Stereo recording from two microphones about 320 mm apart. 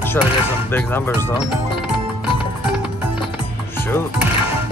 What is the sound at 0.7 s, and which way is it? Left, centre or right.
Speech, centre.